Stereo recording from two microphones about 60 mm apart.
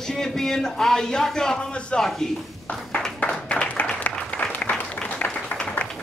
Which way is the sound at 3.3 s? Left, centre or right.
Centre.